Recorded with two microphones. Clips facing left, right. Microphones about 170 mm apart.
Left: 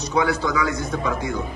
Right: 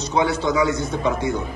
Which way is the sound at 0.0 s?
25° right (ahead or behind).